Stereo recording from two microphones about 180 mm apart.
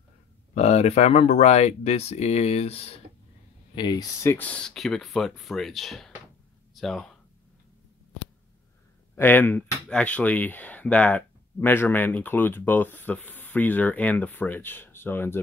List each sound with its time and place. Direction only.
0.6 s speech: 35° left (ahead or behind)
3.7 s speech: 25° left (ahead or behind)
4.6 s speech: 5° left (ahead or behind)
6.7 s a sound: centre (ahead or behind)
9.1 s speech: 10° left (ahead or behind)